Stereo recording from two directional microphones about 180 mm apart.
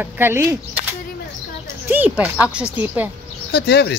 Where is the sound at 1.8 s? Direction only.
10° right (ahead or behind).